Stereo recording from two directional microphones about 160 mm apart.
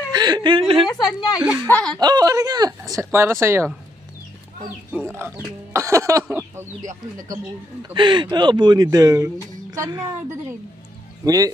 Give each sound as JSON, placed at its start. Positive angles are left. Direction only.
{"t": 0.1, "sound": "a woman's voice", "side_deg": -25}
{"t": 0.8, "sound": "a woman's voice", "side_deg": 25}
{"t": 1.7, "sound": "speech", "side_deg": 5}
{"t": 2.0, "sound": "speech", "side_deg": -25}
{"t": 5.7, "sound": "speech", "side_deg": -15}
{"t": 7.9, "sound": "speech", "side_deg": -30}